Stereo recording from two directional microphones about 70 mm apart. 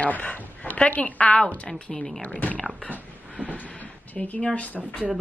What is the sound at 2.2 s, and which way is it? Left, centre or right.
A woman's voice, left.